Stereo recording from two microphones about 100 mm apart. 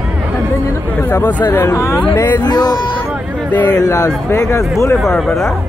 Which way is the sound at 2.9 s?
15° right (ahead or behind).